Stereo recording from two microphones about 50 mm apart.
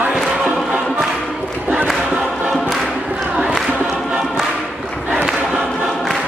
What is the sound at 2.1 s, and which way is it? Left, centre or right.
Choir, centre.